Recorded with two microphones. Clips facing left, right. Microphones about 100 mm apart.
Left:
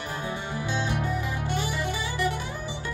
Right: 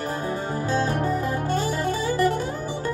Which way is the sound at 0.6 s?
40° right (ahead or behind).